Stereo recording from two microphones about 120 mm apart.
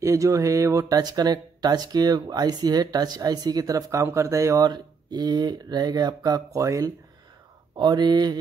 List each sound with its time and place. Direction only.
0.0 s speech: 25° right (ahead or behind)
7.7 s speech: 40° right (ahead or behind)